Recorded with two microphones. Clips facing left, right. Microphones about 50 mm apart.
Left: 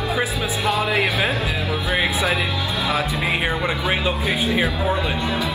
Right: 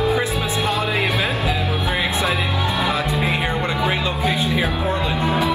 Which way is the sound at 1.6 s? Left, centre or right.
Right.